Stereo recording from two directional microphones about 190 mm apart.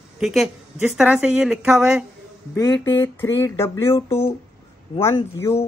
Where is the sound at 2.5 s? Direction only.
15° left (ahead or behind).